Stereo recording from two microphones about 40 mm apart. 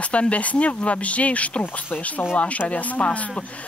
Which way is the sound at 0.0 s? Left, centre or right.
Left.